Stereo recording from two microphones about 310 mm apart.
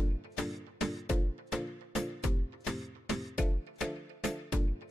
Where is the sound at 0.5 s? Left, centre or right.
Centre.